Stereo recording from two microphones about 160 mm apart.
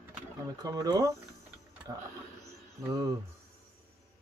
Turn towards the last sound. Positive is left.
turn(degrees=-20)  # may be behind; listen again after turning